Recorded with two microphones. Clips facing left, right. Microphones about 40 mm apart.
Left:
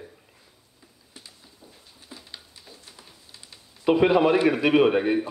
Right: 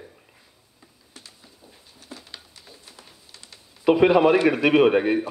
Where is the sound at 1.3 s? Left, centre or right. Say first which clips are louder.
Right 1 dB; centre.